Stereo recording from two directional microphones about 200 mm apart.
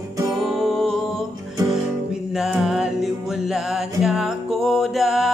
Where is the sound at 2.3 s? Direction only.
5° right (ahead or behind).